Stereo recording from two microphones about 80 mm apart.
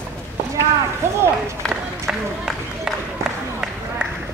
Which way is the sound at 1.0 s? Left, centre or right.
Right.